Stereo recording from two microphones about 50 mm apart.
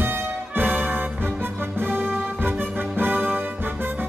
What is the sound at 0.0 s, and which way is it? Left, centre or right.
Music, right.